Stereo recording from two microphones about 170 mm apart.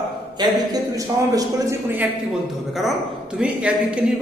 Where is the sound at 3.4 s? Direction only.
5° right (ahead or behind).